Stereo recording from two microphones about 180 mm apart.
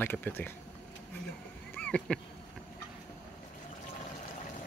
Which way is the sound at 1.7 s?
5° left (ahead or behind).